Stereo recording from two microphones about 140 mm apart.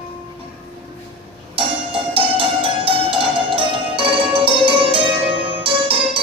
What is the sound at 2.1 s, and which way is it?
Music, 40° right (ahead or behind).